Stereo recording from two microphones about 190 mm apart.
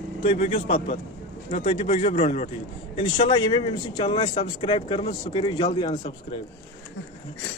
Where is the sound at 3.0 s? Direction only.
25° left (ahead or behind).